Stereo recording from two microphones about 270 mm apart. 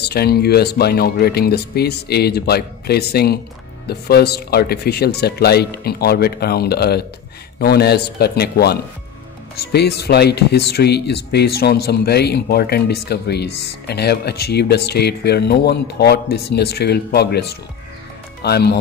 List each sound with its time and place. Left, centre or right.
0.0 s speech: left